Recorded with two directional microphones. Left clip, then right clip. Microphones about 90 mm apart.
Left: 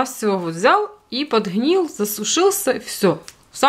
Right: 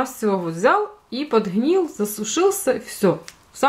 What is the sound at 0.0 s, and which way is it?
A woman's voice, 15° left (ahead or behind).